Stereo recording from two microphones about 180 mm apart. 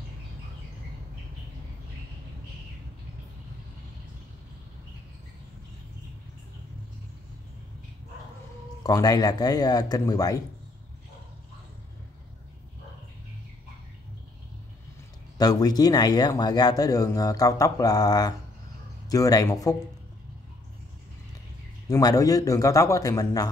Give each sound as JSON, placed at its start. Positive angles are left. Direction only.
{"t": 8.8, "sound": "speech", "side_deg": 20}
{"t": 15.3, "sound": "speech", "side_deg": 20}
{"t": 21.8, "sound": "speech", "side_deg": 20}